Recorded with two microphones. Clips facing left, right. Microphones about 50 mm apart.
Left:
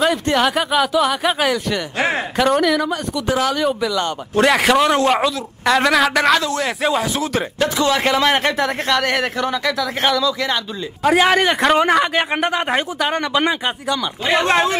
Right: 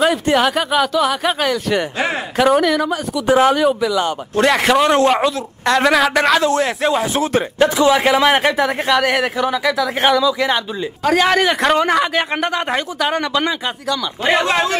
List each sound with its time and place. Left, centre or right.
0.0 s a man's voice: centre
3.3 s speech: right
3.5 s a man's voice: centre
7.5 s speech: centre
11.1 s speech: centre